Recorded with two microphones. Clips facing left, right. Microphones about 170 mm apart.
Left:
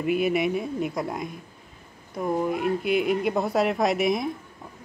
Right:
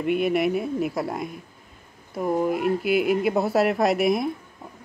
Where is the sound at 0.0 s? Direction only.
Centre (ahead or behind).